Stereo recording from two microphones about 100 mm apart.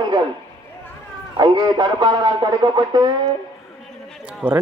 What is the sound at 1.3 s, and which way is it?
A man's voice, 50° right (ahead or behind).